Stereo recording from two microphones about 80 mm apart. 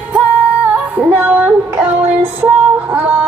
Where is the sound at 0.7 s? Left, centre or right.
Centre.